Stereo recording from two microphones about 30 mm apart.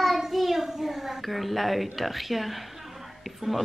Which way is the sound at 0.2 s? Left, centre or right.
Centre.